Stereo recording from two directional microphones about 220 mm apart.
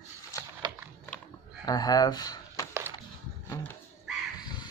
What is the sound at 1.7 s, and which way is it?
Speech, 15° left (ahead or behind).